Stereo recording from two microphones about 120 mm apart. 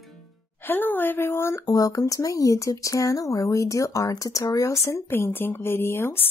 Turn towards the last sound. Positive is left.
turn(degrees=20)  # may be behind; listen again after turning